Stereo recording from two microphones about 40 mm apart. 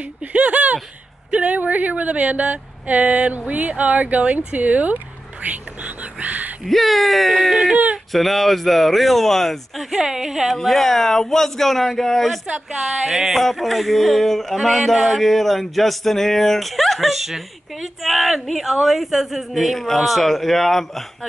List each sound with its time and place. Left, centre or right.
0.3 s a sound: right
1.3 s speech: right
6.2 s a sound: right
6.6 s speech: centre
9.8 s music: centre
10.6 s speech: centre
12.4 s music: centre
13.4 s speech: centre